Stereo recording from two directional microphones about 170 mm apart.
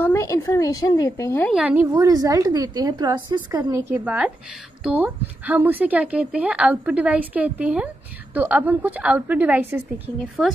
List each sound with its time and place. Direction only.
0.0 s a woman's voice: 15° left (ahead or behind)
1.5 s a woman's voice: 5° right (ahead or behind)
2.0 s a woman's voice: 20° right (ahead or behind)